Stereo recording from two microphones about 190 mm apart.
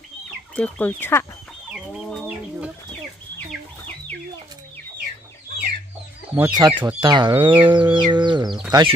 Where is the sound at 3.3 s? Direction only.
10° left (ahead or behind).